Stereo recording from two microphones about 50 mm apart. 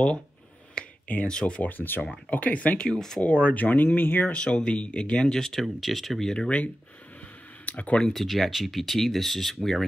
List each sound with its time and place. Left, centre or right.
0.7 s speech: left
1.7 s speech: left
2.9 s speech: centre
3.2 s speech: left
4.3 s speech: left; by 6.2 s centre
6.2 s speech: centre
7.6 s speech: left
8.0 s speech: centre